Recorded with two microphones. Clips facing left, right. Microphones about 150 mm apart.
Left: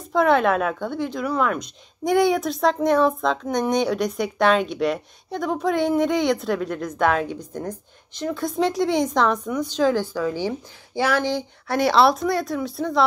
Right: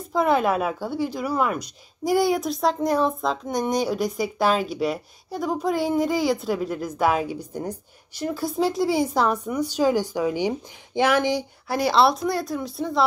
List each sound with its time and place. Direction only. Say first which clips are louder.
0.0 s a woman's voice: left 2 dB; centre (ahead or behind)
11.6 s speech: left 2 dB; centre (ahead or behind)